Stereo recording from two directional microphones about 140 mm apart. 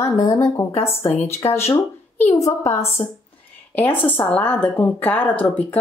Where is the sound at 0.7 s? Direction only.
45° left (ahead or behind).